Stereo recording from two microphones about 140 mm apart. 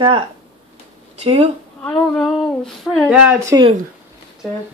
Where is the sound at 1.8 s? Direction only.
10° left (ahead or behind).